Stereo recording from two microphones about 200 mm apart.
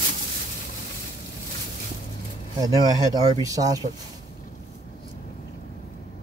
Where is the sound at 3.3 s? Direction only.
15° right (ahead or behind).